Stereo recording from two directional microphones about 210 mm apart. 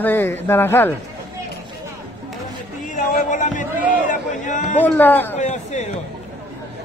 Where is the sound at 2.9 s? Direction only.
35° left (ahead or behind).